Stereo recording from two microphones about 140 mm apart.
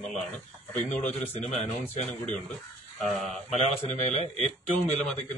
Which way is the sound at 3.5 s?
55° left (ahead or behind).